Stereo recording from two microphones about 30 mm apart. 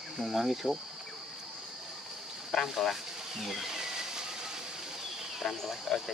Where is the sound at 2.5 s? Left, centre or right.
Centre.